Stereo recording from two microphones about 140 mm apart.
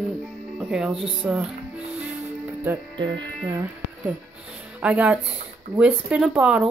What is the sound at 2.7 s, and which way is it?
Speech, 15° right (ahead or behind).